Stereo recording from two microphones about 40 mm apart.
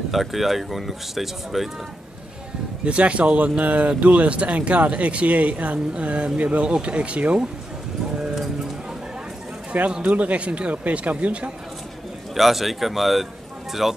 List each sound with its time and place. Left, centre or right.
0.1 s speech: centre
2.8 s speech: right
10.0 s speech: right
12.4 s speech: centre